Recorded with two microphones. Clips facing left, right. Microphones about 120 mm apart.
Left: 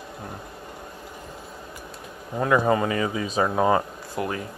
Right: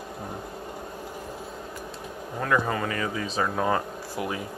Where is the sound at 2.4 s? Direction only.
20° left (ahead or behind).